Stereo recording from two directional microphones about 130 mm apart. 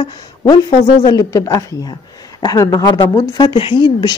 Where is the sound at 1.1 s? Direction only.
25° left (ahead or behind).